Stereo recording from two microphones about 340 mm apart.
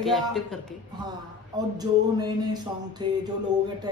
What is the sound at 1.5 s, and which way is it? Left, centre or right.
Speech, centre.